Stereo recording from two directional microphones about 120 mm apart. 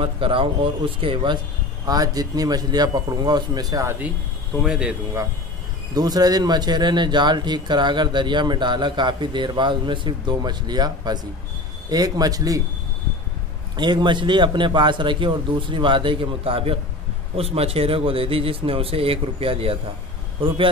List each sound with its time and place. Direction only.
0.0 s speech: 50° right (ahead or behind)
1.9 s speech: 30° right (ahead or behind)
4.6 s speech: 10° right (ahead or behind)
5.9 s speech: 35° right (ahead or behind)
13.7 s speech: 40° right (ahead or behind)